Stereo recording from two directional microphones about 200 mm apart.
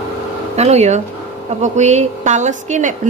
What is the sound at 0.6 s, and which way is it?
A woman's voice, 35° right (ahead or behind).